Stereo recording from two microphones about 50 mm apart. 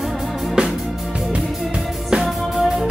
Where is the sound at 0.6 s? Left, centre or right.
Centre.